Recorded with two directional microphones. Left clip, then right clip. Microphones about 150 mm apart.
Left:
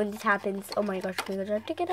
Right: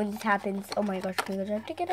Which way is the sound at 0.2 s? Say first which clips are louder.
Right 1 dB; 10° left (ahead or behind).